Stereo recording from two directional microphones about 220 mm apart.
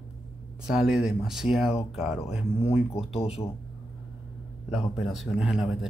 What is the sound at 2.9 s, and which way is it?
Speech, 25° left (ahead or behind).